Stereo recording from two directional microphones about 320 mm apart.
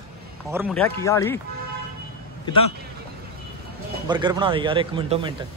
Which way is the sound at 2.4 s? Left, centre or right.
Centre.